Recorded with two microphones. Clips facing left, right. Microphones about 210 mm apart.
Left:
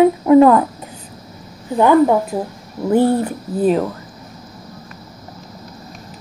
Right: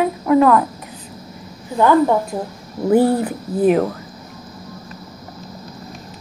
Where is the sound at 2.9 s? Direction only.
5° right (ahead or behind).